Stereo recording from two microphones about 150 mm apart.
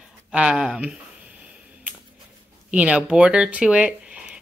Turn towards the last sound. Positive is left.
turn(degrees=-5)  # may be behind; listen again after turning